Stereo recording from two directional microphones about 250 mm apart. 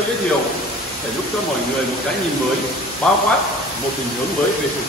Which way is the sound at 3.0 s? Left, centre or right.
Centre.